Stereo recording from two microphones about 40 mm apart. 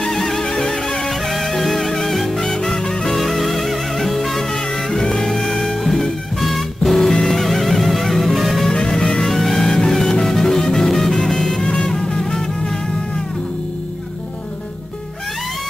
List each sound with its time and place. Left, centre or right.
0.0 s music: centre
2.4 s music: centre
3.2 s music: centre
6.4 s music: centre
8.6 s music: centre
9.3 s music: centre